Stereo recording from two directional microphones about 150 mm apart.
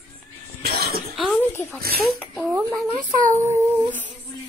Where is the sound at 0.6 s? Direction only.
90° right.